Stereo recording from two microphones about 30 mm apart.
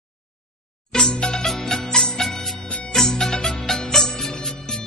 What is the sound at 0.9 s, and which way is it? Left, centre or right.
Music, left.